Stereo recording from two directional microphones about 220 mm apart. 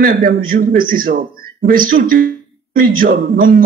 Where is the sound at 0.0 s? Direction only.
40° right (ahead or behind).